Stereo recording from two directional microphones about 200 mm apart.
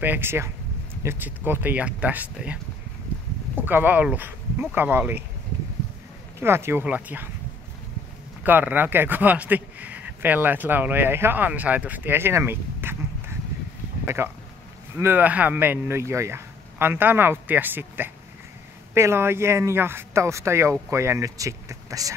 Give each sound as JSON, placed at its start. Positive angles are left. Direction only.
{"t": 0.0, "sound": "speech", "side_deg": -10}
{"t": 6.4, "sound": "speech", "side_deg": -10}
{"t": 8.5, "sound": "speech", "side_deg": -10}